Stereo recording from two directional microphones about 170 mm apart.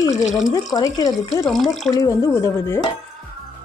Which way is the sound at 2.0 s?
20° left (ahead or behind).